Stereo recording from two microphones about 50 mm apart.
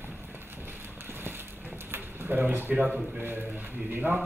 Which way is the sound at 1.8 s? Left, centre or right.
Right.